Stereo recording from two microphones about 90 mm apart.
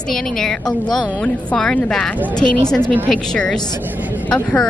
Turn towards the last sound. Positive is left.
turn(degrees=10)  # may be behind; listen again after turning